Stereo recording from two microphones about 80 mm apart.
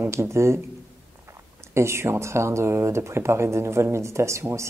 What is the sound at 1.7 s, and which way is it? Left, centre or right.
Speech, right.